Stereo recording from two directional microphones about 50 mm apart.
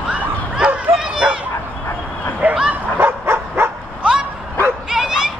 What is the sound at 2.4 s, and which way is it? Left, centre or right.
Bow-wow, right.